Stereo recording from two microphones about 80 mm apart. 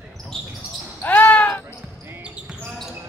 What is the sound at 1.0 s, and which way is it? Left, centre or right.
Basketball bounce, left.